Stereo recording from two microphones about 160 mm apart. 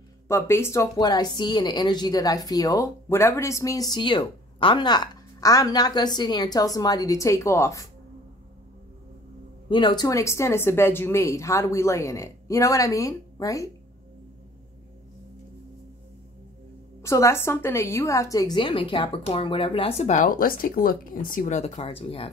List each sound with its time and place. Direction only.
0.3 s speech: 15° left (ahead or behind)
0.9 s a woman's voice: 25° left (ahead or behind)
9.7 s a woman's voice: 30° left (ahead or behind)
17.0 s a woman's voice: 15° left (ahead or behind); by 20.2 s 45° left (ahead or behind)
20.2 s speech: 65° left (ahead or behind); by 22.3 s 35° left (ahead or behind)